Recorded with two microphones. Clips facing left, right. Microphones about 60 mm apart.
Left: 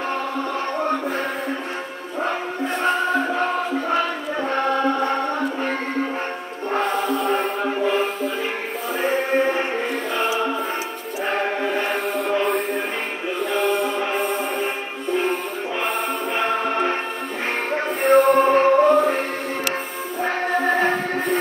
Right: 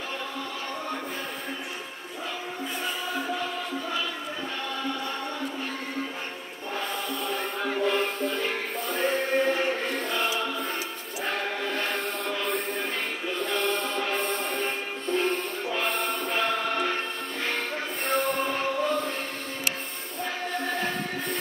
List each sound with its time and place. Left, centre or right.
2.2 s music: left
6.7 s music: left
7.6 s music: left
7.9 s music: centre
9.4 s music: left
10.1 s music: centre
11.2 s music: left
12.4 s music: centre
16.3 s music: left
18.0 s music: left
18.5 s music: left
18.9 s music: left
20.5 s music: left